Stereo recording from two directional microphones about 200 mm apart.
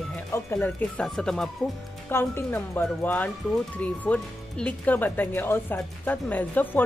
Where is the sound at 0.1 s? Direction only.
10° left (ahead or behind).